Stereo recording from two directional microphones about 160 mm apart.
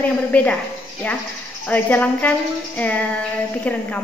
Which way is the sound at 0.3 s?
10° left (ahead or behind).